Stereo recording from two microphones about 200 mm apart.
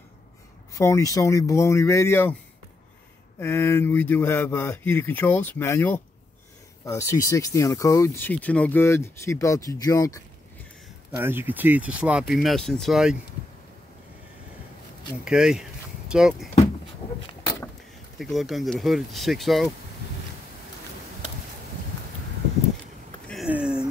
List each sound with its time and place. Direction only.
0.7 s speech: 15° left (ahead or behind)
3.3 s speech: 10° left (ahead or behind)
11.1 s speech: 10° right (ahead or behind)
15.2 s speech: 5° right (ahead or behind)
18.2 s speech: centre (ahead or behind)
23.2 s a sound: centre (ahead or behind)